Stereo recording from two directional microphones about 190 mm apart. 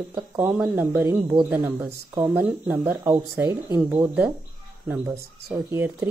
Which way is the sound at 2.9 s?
15° right (ahead or behind).